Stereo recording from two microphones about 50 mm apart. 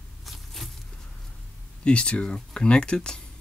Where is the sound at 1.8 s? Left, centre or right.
Left.